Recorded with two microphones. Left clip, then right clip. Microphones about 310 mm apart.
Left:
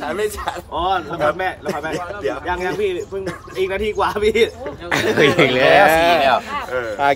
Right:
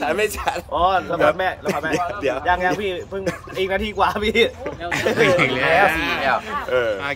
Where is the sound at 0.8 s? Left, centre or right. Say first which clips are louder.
Right 1 dB; centre.